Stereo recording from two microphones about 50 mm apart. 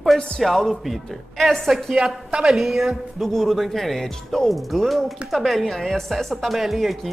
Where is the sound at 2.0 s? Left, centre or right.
Centre.